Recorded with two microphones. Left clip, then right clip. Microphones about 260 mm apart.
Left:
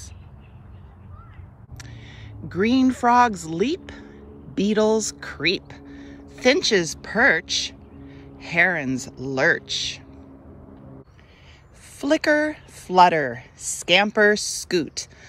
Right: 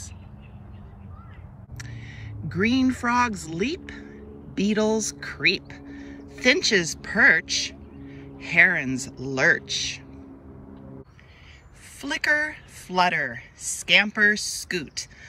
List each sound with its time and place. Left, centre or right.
1.8 s a sound: centre
2.5 s speech: centre
12.0 s speech: centre